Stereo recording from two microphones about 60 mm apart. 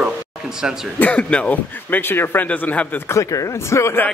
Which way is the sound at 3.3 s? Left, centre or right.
Left.